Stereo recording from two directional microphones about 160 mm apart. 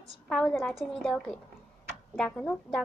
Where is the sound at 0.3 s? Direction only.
5° left (ahead or behind).